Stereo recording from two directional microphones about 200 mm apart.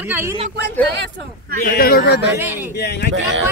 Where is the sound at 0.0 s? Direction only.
10° right (ahead or behind).